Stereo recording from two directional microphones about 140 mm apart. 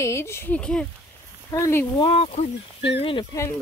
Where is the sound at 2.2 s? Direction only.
50° left (ahead or behind).